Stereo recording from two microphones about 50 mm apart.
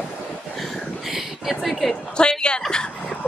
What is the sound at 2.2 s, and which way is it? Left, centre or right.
Speech, centre.